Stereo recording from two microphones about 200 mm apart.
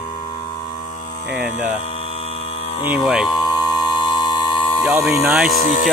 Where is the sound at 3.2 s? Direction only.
20° left (ahead or behind).